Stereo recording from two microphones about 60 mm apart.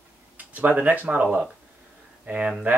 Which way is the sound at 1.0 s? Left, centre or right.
Right.